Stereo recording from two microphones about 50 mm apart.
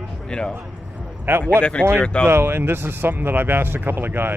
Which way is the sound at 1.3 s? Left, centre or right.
Right.